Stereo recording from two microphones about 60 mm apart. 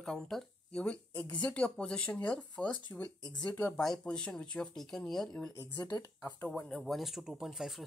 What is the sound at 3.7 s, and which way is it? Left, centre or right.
Speech, centre.